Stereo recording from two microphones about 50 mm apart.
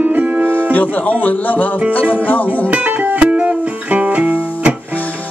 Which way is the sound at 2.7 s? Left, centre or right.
Right.